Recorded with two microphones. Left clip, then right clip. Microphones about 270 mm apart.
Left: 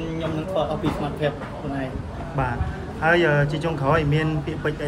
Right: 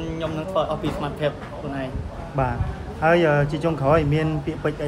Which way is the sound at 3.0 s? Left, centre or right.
Right.